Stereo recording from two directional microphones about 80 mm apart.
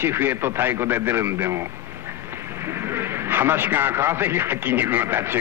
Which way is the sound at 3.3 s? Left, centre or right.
Right.